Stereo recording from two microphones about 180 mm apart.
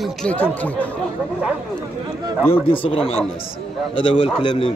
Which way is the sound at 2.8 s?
30° left (ahead or behind).